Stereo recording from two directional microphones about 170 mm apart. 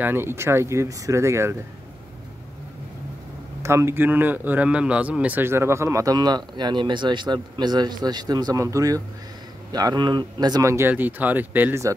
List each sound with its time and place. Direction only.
0.0 s speech: 15° right (ahead or behind)
3.6 s a man's voice: 15° right (ahead or behind)